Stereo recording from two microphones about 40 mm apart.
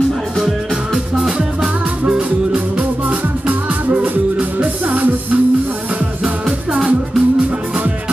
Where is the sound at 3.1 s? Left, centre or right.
Right.